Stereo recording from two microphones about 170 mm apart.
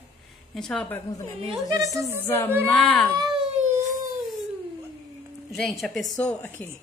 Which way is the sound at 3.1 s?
25° right (ahead or behind).